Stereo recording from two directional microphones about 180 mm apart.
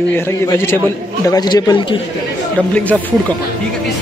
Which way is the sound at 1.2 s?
20° left (ahead or behind).